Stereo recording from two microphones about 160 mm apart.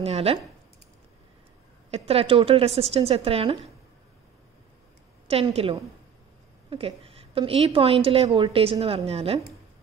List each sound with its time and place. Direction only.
0.0 s a woman's voice: 40° right (ahead or behind)
1.9 s a woman's voice: 40° right (ahead or behind)
5.3 s a woman's voice: 40° right (ahead or behind)
7.3 s a woman's voice: 35° right (ahead or behind)